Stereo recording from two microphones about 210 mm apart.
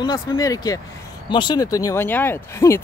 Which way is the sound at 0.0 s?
20° left (ahead or behind).